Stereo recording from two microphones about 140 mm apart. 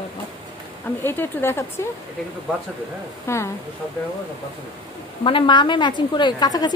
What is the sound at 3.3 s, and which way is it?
Speech, 20° left (ahead or behind).